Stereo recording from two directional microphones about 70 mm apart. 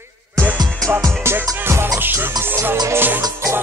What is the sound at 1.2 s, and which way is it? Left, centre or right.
Music, right.